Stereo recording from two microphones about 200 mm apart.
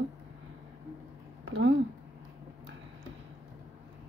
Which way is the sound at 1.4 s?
60° right (ahead or behind).